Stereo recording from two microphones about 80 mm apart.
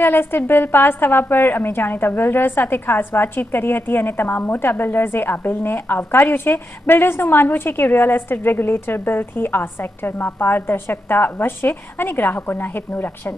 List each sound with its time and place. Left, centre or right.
0.0 s a woman's voice: left